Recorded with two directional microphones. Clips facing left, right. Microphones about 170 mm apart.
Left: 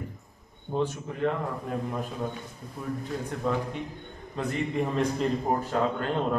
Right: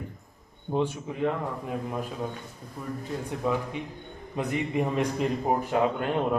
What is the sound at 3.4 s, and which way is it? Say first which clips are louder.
Speech: right 1 dB; 5° right (ahead or behind).